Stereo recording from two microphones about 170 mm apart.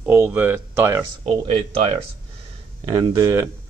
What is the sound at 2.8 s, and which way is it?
Speech, 20° right (ahead or behind).